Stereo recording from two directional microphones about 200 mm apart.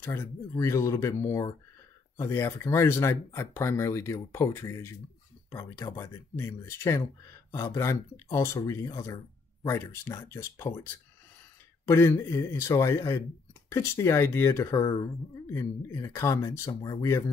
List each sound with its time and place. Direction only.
0.0 s speech: 15° left (ahead or behind)
11.8 s speech: 10° left (ahead or behind)